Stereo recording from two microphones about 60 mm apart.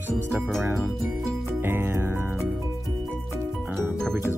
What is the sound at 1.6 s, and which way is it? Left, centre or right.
Speech, right.